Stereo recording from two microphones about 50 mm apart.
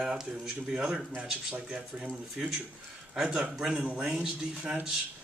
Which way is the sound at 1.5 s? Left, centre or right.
Right.